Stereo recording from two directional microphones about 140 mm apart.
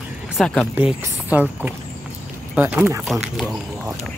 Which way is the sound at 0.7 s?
10° right (ahead or behind).